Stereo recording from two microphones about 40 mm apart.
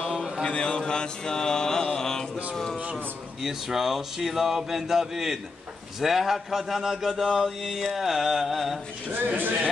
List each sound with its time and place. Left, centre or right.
0.4 s mantra: left
2.0 s speech: centre
3.4 s speech: centre
7.4 s carnatic music: centre
9.1 s speech: right